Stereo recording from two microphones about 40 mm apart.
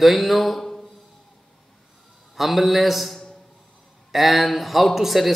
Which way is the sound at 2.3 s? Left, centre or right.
Centre.